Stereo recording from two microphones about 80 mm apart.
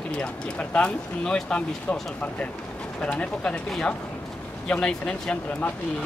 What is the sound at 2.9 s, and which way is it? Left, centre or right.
Speech, centre.